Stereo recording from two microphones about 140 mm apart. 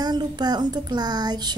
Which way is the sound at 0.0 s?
30° right (ahead or behind).